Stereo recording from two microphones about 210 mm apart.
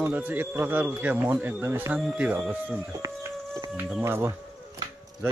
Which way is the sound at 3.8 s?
5° right (ahead or behind).